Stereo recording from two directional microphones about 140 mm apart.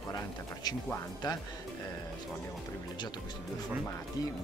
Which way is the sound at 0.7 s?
30° left (ahead or behind).